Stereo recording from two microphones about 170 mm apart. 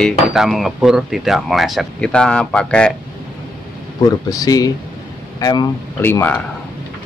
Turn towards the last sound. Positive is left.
turn(degrees=10)  # may be behind; listen again after turning